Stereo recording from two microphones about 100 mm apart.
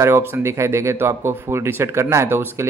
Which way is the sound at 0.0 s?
25° right (ahead or behind).